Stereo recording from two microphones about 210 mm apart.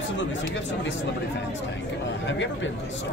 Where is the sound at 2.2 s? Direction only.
60° left (ahead or behind).